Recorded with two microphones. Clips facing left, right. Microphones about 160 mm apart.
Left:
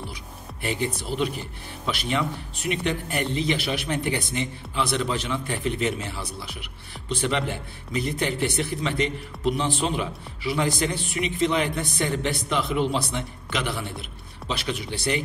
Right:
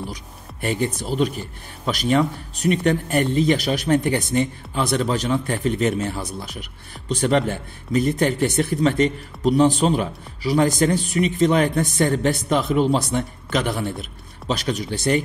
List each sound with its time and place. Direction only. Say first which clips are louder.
0.1 s music: right 3 dB; 45° right (ahead or behind)
1.9 s speech: right 7 dB; 45° right (ahead or behind)